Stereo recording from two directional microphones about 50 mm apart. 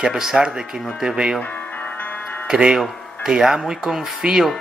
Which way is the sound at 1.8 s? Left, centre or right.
Left.